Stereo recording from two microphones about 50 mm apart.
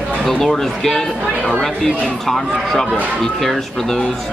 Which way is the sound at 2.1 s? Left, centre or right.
Centre.